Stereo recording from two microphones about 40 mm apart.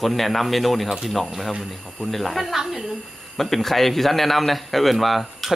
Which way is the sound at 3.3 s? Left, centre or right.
Centre.